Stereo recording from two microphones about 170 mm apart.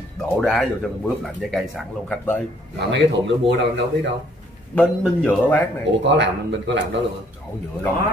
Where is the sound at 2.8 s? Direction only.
90° right.